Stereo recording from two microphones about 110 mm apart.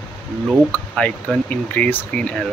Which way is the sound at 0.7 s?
10° left (ahead or behind).